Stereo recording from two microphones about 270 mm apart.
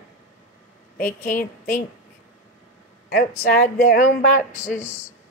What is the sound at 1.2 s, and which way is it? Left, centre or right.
Speech, left.